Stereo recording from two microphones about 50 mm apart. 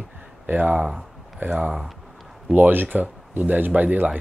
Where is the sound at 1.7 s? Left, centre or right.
Centre.